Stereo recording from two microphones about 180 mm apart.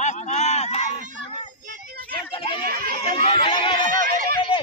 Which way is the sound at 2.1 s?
30° left (ahead or behind).